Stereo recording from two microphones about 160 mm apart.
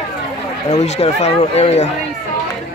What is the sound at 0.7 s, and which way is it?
Speech, 40° left (ahead or behind).